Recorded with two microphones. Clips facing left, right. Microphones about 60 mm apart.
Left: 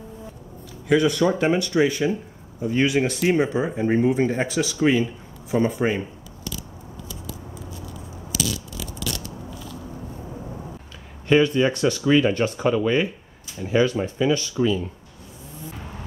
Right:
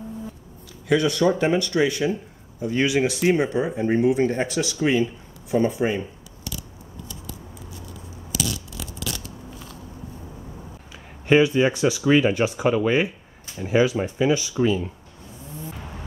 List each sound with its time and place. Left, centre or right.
0.8 s speech: centre
2.6 s speech: centre
8.3 s crushing: centre
11.2 s speech: centre